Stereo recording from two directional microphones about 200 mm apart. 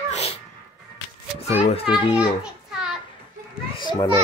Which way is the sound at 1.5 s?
30° left (ahead or behind).